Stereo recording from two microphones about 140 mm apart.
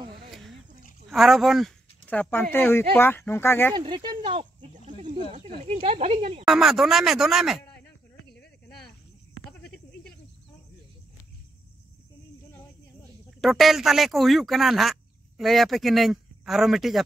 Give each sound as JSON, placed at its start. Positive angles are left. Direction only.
{"t": 0.3, "sound": "a sound", "side_deg": 0}
{"t": 1.0, "sound": "speech", "side_deg": 0}
{"t": 2.0, "sound": "speech", "side_deg": 10}
{"t": 3.7, "sound": "speech", "side_deg": -35}
{"t": 4.7, "sound": "a sound", "side_deg": -60}
{"t": 5.8, "sound": "speech", "side_deg": -45}
{"t": 6.4, "sound": "speech", "side_deg": 0}
{"t": 8.4, "sound": "a sound", "side_deg": 5}
{"t": 13.4, "sound": "speech", "side_deg": 0}